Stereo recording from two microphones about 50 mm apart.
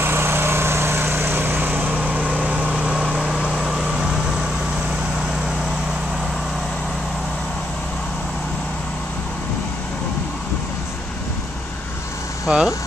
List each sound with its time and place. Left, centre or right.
0.0 s vehicle: right; by 4.1 s centre
12.4 s speech: centre